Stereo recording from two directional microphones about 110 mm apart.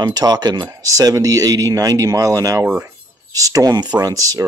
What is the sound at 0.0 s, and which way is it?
Speech, 35° right (ahead or behind).